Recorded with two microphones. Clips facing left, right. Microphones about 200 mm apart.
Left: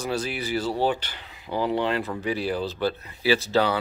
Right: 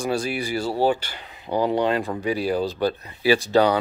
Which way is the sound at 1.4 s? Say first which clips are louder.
Right 4 dB; 20° right (ahead or behind).